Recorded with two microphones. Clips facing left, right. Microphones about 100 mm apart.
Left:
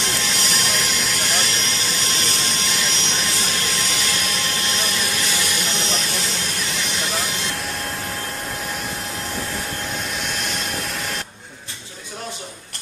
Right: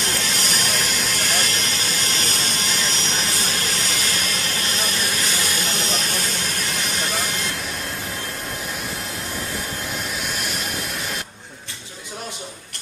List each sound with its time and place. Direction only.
0.0 s vehicle: 45° right (ahead or behind)
10.2 s vehicle: 5° right (ahead or behind)